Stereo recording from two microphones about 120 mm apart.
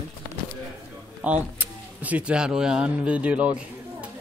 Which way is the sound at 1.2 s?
10° right (ahead or behind).